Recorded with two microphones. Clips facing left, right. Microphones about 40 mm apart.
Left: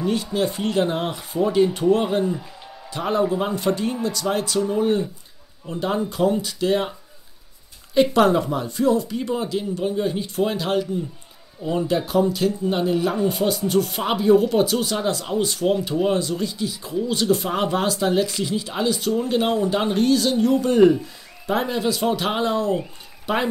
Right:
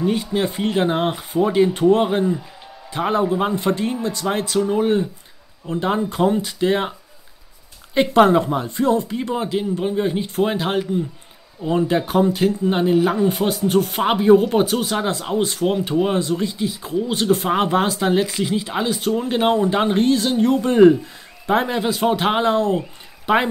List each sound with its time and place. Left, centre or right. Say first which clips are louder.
0.0 s speech: right 2 dB; centre
2.0 s a man's voice: right 2 dB; centre
2.3 s music: right 3 dB; centre
2.9 s a man's voice: right 2 dB; right
4.5 s speech: right 4 dB; right
7.9 s speech: right 2 dB; right
11.6 s a man's voice: right 4 dB; centre
12.1 s speech: right 2 dB; right; by 13.3 s centre
13.3 s speech: right 2 dB; right